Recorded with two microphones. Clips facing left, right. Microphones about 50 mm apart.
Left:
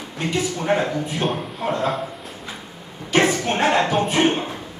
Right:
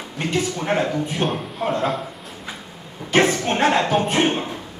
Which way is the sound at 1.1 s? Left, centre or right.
Centre.